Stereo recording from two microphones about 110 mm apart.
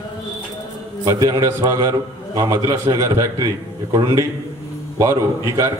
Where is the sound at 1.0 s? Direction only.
35° right (ahead or behind).